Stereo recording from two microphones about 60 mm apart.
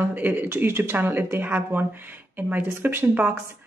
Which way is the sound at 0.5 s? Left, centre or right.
Right.